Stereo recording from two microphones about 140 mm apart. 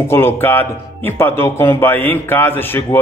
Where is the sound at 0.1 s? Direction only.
15° left (ahead or behind).